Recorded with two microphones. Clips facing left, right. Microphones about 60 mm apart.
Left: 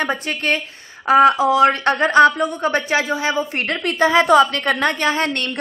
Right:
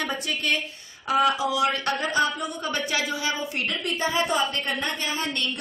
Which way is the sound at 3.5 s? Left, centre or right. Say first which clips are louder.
Left 8 dB; left.